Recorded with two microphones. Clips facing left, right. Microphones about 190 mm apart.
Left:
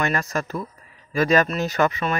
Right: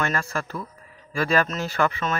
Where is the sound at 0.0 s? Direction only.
20° left (ahead or behind).